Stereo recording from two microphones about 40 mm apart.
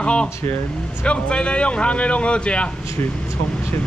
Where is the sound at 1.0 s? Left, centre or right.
Left.